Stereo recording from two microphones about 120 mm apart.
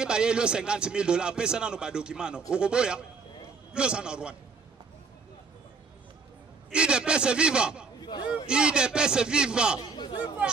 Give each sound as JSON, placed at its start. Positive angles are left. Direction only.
{"t": 0.0, "sound": "a man's voice", "side_deg": -5}
{"t": 6.7, "sound": "a man's voice", "side_deg": -10}
{"t": 8.0, "sound": "speech", "side_deg": 35}
{"t": 8.5, "sound": "a man's voice", "side_deg": -10}
{"t": 9.8, "sound": "chatter", "side_deg": 35}